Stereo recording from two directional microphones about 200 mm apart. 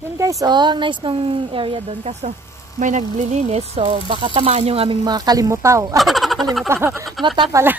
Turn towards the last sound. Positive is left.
turn(degrees=-25)  # may be behind; listen again after turning